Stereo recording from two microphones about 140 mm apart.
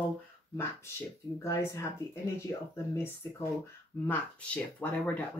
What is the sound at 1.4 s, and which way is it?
Speech, 20° left (ahead or behind).